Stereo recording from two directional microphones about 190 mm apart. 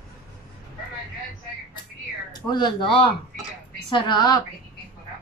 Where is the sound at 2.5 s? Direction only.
25° left (ahead or behind).